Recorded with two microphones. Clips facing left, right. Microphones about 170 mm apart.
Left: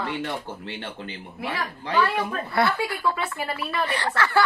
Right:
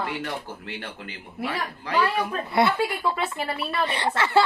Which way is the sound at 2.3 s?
20° right (ahead or behind).